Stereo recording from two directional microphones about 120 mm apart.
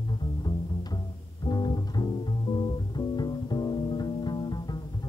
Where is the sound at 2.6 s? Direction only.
35° left (ahead or behind).